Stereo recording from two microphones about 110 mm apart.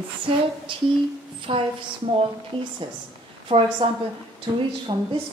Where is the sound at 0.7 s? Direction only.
50° right (ahead or behind).